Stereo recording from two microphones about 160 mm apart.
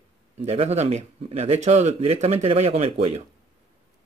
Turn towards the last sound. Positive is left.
turn(degrees=-45)  # may be behind; listen again after turning